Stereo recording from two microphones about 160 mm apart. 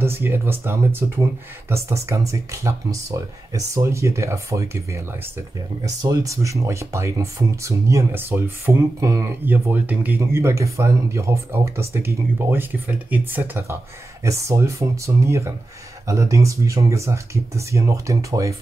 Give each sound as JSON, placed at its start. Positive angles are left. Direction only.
{"t": 0.0, "sound": "speech", "side_deg": -15}